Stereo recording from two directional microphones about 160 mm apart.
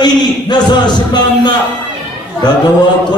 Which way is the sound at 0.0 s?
25° left (ahead or behind).